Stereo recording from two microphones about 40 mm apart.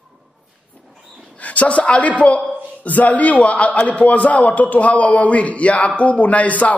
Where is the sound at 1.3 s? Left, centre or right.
Left.